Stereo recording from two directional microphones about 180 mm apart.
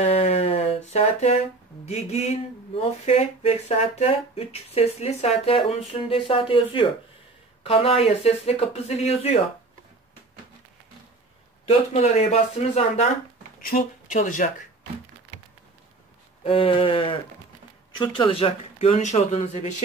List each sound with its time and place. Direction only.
0.0 s a sound: 35° left (ahead or behind)
1.9 s speech: 35° left (ahead or behind)
11.6 s speech: 40° left (ahead or behind)
13.6 s speech: 50° left (ahead or behind)
16.4 s speech: 30° left (ahead or behind)